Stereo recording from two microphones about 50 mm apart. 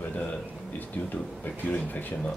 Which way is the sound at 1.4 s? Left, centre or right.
Left.